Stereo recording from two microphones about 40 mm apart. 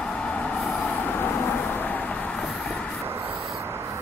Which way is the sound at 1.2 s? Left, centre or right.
Left.